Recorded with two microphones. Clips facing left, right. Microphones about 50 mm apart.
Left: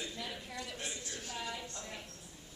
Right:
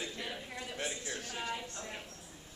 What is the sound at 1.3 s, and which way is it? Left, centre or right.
Speech, right.